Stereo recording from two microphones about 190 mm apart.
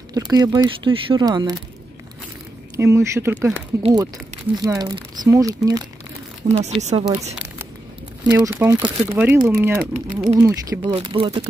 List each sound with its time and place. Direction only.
0.1 s speech: 20° right (ahead or behind)
2.7 s speech: 15° right (ahead or behind)
3.8 s speech: 20° right (ahead or behind)
6.5 s speech: 35° right (ahead or behind)
8.3 s speech: 10° right (ahead or behind)
10.8 s speech: 30° right (ahead or behind)